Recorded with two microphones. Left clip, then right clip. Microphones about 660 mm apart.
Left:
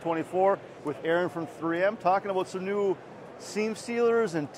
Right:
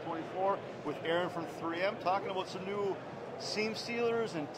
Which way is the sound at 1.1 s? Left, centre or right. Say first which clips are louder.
Left 7 dB; left.